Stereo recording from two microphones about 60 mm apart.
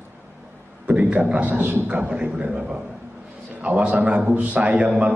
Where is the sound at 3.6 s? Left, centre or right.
Right.